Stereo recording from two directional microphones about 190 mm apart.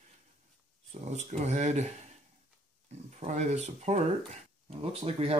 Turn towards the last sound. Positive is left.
turn(degrees=-30)  # may be behind; listen again after turning